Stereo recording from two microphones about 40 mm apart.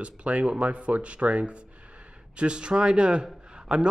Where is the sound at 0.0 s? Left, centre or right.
Right.